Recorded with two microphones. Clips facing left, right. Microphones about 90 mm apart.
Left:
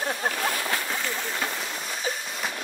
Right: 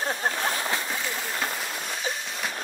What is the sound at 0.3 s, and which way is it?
Speech, 30° right (ahead or behind).